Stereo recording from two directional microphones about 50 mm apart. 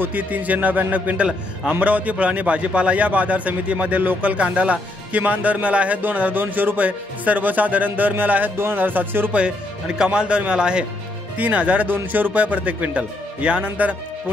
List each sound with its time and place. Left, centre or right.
0.0 s a man's voice: right
4.3 s a man's voice: right
6.3 s speech: right
8.5 s speech: right
9.9 s a man's voice: centre
11.3 s a man's voice: right